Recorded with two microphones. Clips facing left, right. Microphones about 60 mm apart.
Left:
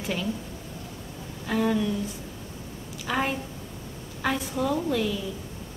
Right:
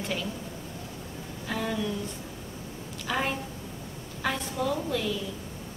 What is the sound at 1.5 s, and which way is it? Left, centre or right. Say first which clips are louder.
Speech: left 6 dB; centre.